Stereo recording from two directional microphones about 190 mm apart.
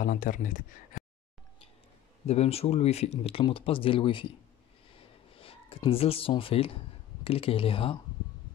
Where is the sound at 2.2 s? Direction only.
35° left (ahead or behind).